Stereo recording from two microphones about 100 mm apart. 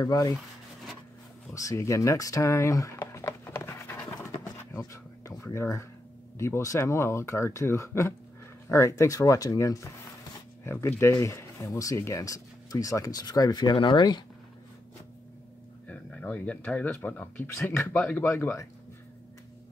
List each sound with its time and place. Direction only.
0.0 s speech: 35° left (ahead or behind)
1.5 s a sound: 35° left (ahead or behind)
5.4 s speech: 25° left (ahead or behind); by 14.2 s 50° left (ahead or behind)
15.9 s speech: 15° left (ahead or behind); by 18.7 s 30° left (ahead or behind)